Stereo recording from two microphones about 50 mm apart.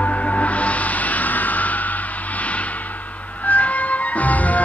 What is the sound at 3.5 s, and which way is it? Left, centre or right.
Music, left.